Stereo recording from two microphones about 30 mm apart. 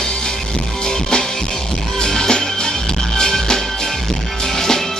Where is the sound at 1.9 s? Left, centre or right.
Left.